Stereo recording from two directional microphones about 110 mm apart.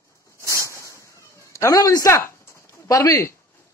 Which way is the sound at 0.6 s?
25° left (ahead or behind).